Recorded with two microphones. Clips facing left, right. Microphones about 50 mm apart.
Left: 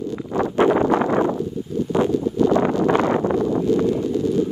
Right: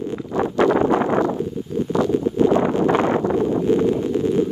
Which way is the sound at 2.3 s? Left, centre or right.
Right.